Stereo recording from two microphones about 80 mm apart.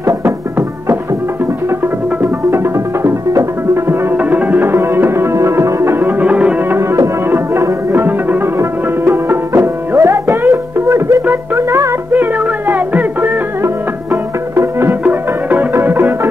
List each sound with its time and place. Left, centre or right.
0.0 s music: right
2.5 s music: right
4.2 s music: right
6.2 s music: centre
7.9 s music: right
14.5 s music: right